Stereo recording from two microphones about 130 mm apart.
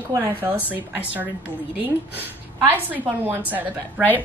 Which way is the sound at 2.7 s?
15° right (ahead or behind).